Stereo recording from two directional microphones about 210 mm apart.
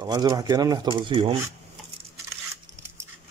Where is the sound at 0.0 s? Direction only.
20° right (ahead or behind).